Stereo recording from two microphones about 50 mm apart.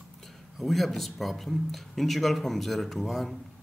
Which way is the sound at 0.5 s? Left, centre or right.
Centre.